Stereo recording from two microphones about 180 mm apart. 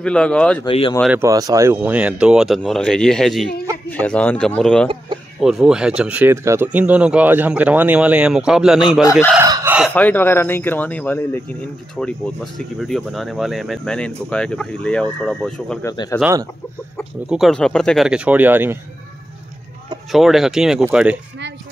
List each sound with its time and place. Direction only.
0.0 s speech: 5° left (ahead or behind)
0.7 s speech: 30° left (ahead or behind)
1.1 s speech: 15° right (ahead or behind)
9.4 s chicken: 15° right (ahead or behind)
9.9 s speech: 10° left (ahead or behind)
15.8 s speech: 20° left (ahead or behind)
17.3 s speech: centre (ahead or behind)
20.1 s speech: centre (ahead or behind)